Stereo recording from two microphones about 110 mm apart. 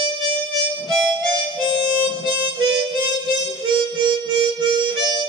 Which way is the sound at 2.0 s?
45° right (ahead or behind).